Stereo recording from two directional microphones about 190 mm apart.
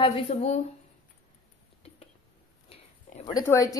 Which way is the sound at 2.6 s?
25° left (ahead or behind).